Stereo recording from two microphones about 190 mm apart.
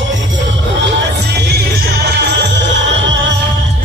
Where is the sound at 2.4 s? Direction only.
70° right (ahead or behind).